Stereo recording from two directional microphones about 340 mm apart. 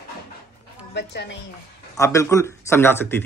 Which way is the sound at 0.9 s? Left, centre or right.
Left.